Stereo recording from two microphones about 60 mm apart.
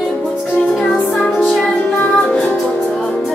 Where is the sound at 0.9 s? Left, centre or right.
Centre.